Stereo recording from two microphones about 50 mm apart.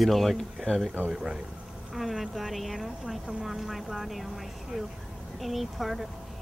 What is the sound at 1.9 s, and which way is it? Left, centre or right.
Speech, centre.